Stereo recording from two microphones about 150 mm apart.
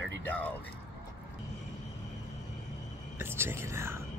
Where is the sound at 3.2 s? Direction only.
15° right (ahead or behind).